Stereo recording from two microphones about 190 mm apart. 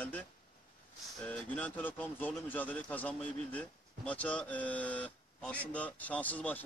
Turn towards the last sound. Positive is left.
turn(degrees=10)  # may be behind; listen again after turning